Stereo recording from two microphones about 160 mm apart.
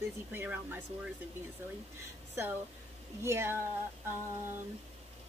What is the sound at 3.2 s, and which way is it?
Speech, 15° right (ahead or behind).